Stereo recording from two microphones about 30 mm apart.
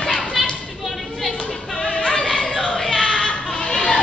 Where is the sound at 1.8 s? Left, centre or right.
Left.